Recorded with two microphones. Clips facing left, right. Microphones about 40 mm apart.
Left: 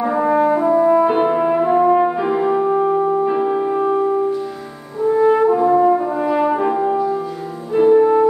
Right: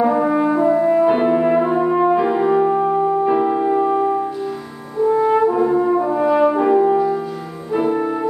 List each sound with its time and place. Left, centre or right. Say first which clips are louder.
0.0 s french horn: even; centre
2.8 s music: even; centre
5.0 s french horn: left 1 dB; centre
7.7 s music: left 7 dB; centre